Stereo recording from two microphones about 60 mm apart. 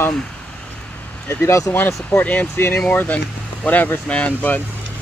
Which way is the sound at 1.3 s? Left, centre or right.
Left.